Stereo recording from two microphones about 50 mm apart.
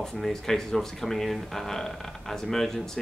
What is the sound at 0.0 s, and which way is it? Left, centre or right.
Speech, centre.